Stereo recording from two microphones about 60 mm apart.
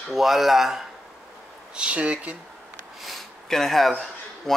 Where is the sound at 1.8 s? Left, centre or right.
Right.